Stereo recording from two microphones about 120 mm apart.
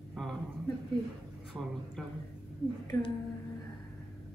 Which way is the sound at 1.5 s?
25° right (ahead or behind).